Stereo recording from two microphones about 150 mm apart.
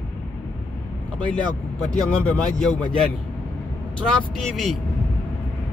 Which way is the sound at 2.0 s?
10° left (ahead or behind).